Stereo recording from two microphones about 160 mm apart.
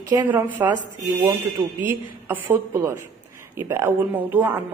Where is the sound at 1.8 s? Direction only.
15° right (ahead or behind).